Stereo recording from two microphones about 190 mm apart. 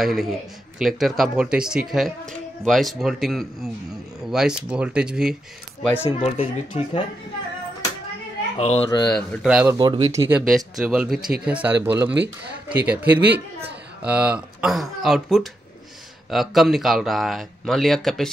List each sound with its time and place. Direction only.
0.0 s speech: centre (ahead or behind)
5.8 s speech: 5° left (ahead or behind)
6.0 s speech: 30° left (ahead or behind)
8.5 s speech: 35° left (ahead or behind)
9.0 s speech: 5° left (ahead or behind)
9.5 s speech: 10° right (ahead or behind)
9.8 s speech: 20° right (ahead or behind)
10.5 s speech: centre (ahead or behind)